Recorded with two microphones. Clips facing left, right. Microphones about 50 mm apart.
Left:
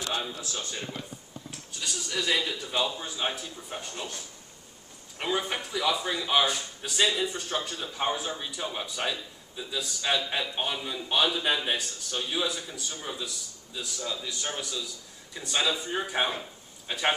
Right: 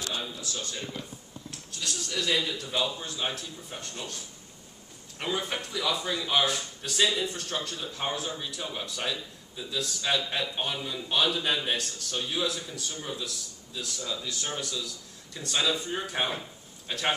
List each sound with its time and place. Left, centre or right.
0.4 s a man's voice: left
0.7 s speech: centre
5.2 s a man's voice: centre